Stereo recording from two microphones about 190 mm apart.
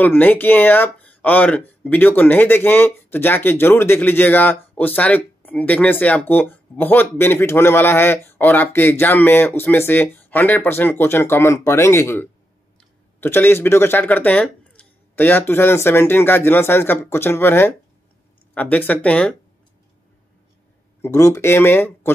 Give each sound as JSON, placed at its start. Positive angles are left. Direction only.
{"t": 0.0, "sound": "speech", "side_deg": 10}
{"t": 21.0, "sound": "speech", "side_deg": 15}